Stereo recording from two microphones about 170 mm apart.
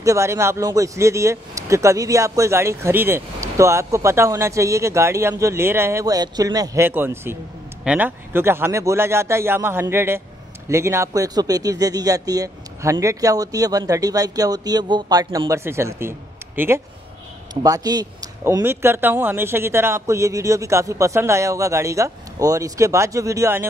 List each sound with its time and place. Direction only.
0.0 s speech: 15° right (ahead or behind)